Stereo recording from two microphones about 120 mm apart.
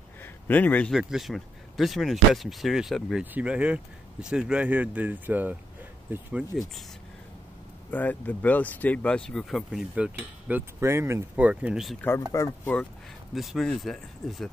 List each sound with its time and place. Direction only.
0.2 s a sound: 15° left (ahead or behind)
0.9 s speech: centre (ahead or behind)
6.5 s speech: 5° left (ahead or behind)
7.9 s speech: 15° left (ahead or behind); by 10.6 s 10° right (ahead or behind)
10.8 s speech: 20° right (ahead or behind)
11.3 s speech: 10° right (ahead or behind)
12.3 s speech: 25° left (ahead or behind)
13.3 s speech: centre (ahead or behind)